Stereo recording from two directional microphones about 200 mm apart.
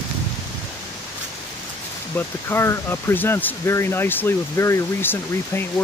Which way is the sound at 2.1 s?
10° left (ahead or behind).